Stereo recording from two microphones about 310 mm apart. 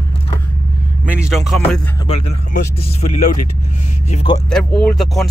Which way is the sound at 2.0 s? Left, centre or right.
Centre.